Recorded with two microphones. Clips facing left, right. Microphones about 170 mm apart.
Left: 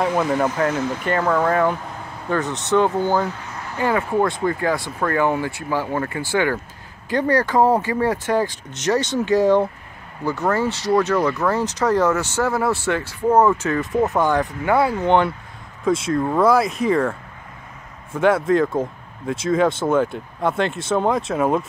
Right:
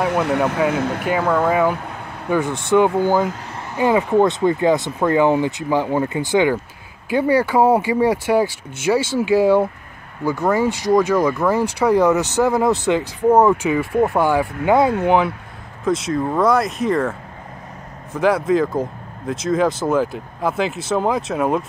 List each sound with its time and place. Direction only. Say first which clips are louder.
0.1 s speech: right 1 dB; 70° right (ahead or behind)
1.0 s speech: right 1 dB; 5° right (ahead or behind)
15.0 s speech: right 1 dB; 5° right (ahead or behind)
18.1 s speech: even; centre (ahead or behind)